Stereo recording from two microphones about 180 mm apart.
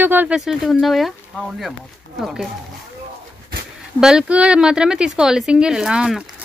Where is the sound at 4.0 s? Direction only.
5° right (ahead or behind).